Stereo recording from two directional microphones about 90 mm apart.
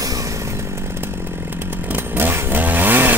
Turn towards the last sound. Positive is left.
turn(degrees=-20)  # may be behind; listen again after turning